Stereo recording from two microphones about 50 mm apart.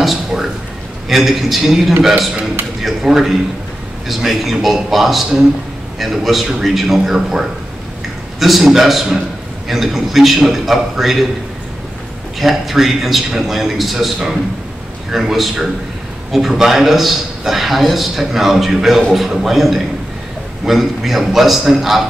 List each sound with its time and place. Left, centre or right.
0.0 s a sound: centre
1.0 s a man's voice: centre
12.4 s a man's voice: centre